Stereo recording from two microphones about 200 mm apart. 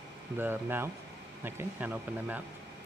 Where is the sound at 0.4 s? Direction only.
10° right (ahead or behind).